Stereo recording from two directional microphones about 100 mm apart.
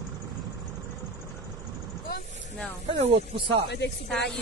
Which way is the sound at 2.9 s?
75° right (ahead or behind).